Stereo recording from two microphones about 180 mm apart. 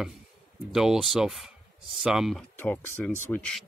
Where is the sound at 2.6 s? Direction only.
10° left (ahead or behind).